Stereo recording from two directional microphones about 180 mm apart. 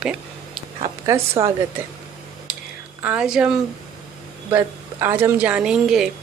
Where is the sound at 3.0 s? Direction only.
5° right (ahead or behind).